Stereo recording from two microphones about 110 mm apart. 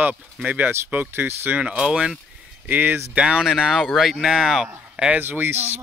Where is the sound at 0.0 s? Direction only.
10° right (ahead or behind).